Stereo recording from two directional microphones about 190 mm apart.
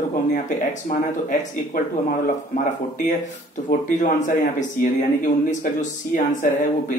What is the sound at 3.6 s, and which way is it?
Speech, 40° left (ahead or behind).